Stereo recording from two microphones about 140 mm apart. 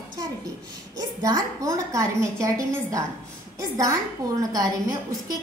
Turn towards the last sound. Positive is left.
turn(degrees=-25)  # may be behind; listen again after turning